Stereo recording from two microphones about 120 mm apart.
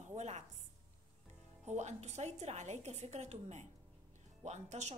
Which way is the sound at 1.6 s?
75° right (ahead or behind).